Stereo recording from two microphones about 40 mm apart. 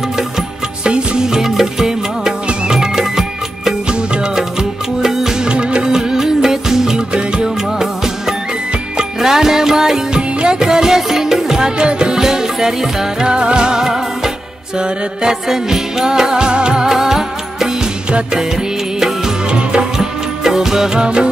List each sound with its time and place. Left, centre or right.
0.8 s music: right
3.9 s music: right
5.5 s music: right